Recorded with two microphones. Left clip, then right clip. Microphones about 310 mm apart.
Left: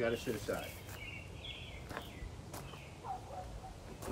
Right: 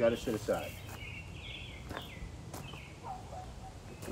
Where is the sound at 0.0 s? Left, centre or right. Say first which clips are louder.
Right 6 dB; centre.